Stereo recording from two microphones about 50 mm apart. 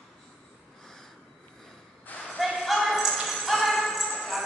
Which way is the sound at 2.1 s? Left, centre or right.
Left.